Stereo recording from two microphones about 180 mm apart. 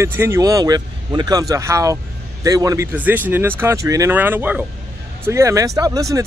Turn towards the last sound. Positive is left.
turn(degrees=-20)  # may be behind; listen again after turning